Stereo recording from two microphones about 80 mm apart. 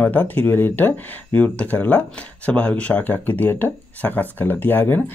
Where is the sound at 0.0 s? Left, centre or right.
Left.